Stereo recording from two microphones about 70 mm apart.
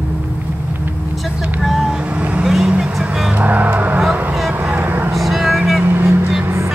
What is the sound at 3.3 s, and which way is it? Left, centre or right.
Vehicle, right.